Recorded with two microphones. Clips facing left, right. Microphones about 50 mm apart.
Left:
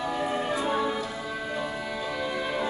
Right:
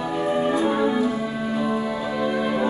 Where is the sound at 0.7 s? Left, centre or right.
Centre.